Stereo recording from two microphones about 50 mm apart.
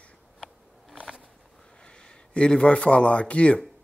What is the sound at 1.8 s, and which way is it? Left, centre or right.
Speech, centre.